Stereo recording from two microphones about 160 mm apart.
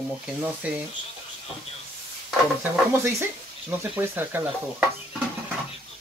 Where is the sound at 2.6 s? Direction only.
15° right (ahead or behind).